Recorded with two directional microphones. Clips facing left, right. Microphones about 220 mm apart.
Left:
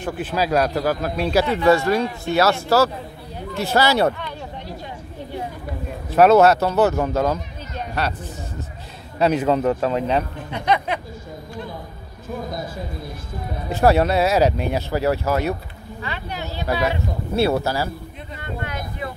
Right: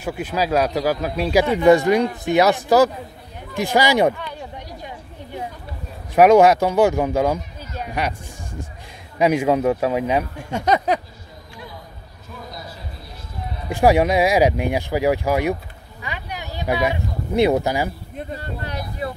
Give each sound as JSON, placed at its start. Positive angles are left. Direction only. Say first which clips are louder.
{"t": 0.0, "sound": "a man's voice", "louder": "even", "side_deg": -10}
{"t": 3.5, "sound": "a sound", "louder": "right 1 dB", "side_deg": -15}
{"t": 6.0, "sound": "speech", "louder": "right 1 dB", "side_deg": -15}
{"t": 9.2, "sound": "a man's voice", "louder": "right 1 dB", "side_deg": -10}
{"t": 10.5, "sound": "speech", "louder": "right 3 dB", "side_deg": -45}
{"t": 12.4, "sound": "speech", "louder": "left 7 dB", "side_deg": 50}
{"t": 13.7, "sound": "a man's voice", "louder": "right 1 dB", "side_deg": -15}
{"t": 18.1, "sound": "a sound", "louder": "right 2 dB", "side_deg": -35}